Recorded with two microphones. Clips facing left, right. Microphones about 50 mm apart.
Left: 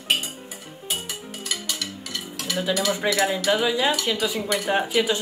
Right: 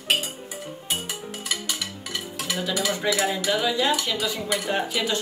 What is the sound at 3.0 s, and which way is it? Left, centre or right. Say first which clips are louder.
Stir: left 3 dB; centre.